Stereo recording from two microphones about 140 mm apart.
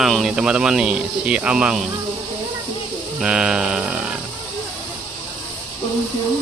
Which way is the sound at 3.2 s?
5° right (ahead or behind).